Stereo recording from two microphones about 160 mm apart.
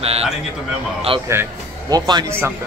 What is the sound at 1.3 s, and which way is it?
Speech, 20° right (ahead or behind).